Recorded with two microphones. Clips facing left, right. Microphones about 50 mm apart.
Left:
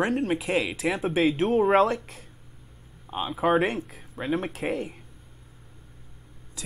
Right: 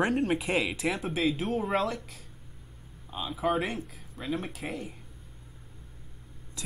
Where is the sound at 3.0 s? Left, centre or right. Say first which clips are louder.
Left 6 dB; left.